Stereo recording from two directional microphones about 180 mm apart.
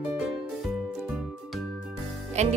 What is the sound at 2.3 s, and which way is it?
Speech, 40° right (ahead or behind).